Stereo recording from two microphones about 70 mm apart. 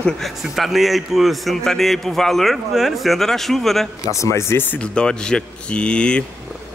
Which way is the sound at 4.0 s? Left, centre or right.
Left.